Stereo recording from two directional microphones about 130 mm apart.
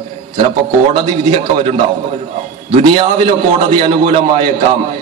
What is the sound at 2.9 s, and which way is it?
A man's voice, 40° right (ahead or behind).